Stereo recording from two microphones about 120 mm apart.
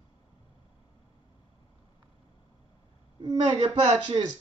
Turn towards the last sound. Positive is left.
turn(degrees=-35)  # may be behind; listen again after turning